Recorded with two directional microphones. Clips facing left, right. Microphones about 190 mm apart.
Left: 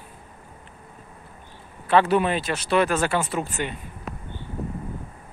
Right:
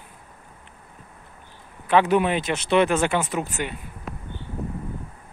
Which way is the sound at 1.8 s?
15° right (ahead or behind).